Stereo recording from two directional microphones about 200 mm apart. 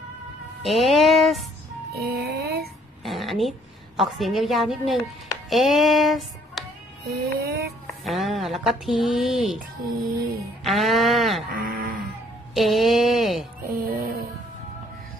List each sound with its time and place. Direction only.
0.7 s a sound: centre (ahead or behind)
2.0 s child singing: 50° right (ahead or behind)
3.0 s a woman's voice: centre (ahead or behind)
5.5 s music: centre (ahead or behind)
7.1 s music: 50° right (ahead or behind)
7.8 s speech: centre (ahead or behind)
10.6 s speech: centre (ahead or behind)
11.5 s a sound: 45° right (ahead or behind)
12.5 s speech: centre (ahead or behind)
13.6 s music: 45° right (ahead or behind)